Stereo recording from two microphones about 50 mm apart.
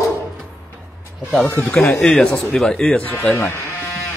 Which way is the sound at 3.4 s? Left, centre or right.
Left.